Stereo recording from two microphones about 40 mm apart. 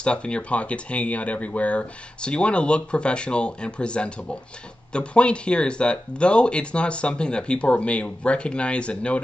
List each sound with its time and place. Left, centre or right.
0.0 s speech: left
2.2 s speech: left